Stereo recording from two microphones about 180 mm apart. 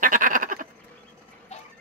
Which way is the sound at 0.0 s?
50° right (ahead or behind).